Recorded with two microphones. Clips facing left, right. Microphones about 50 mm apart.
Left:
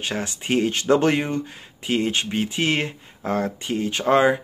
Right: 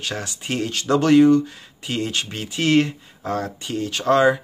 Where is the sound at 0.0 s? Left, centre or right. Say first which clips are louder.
Left 1 dB; left.